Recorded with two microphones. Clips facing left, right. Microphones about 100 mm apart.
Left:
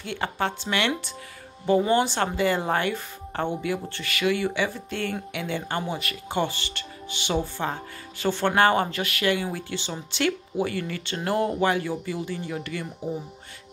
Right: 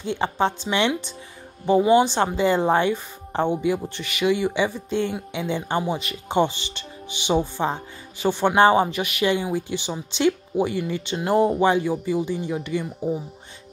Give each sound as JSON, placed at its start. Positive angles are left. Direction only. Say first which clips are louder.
{"t": 0.0, "sound": "a woman's voice", "louder": "right 5 dB", "side_deg": -20}